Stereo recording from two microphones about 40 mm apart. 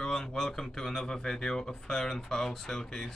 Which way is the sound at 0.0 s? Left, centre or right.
Centre.